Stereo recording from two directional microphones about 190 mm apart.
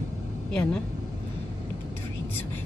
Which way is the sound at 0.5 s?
5° left (ahead or behind).